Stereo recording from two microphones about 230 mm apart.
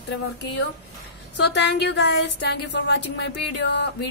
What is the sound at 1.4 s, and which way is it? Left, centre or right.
A woman's voice, left.